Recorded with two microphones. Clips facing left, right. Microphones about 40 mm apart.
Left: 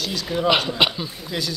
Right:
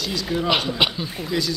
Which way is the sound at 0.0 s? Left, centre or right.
Centre.